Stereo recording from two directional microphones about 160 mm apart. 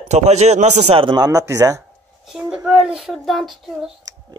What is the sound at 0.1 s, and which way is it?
A man's voice, 45° right (ahead or behind).